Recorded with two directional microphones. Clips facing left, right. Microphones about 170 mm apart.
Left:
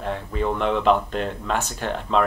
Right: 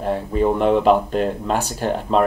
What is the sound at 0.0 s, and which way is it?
Speech, 40° right (ahead or behind).